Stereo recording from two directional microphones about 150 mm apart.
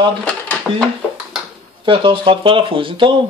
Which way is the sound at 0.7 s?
Centre (ahead or behind).